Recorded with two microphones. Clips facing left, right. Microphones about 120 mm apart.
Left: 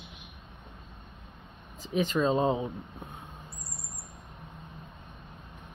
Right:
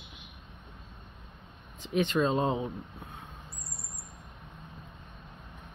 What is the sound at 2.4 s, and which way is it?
Speech, 25° left (ahead or behind).